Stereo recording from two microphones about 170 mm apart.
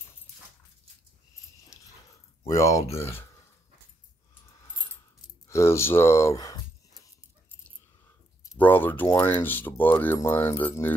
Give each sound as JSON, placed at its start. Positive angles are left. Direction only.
{"t": 2.4, "sound": "speech", "side_deg": 20}
{"t": 5.5, "sound": "speech", "side_deg": 15}
{"t": 8.5, "sound": "speech", "side_deg": 10}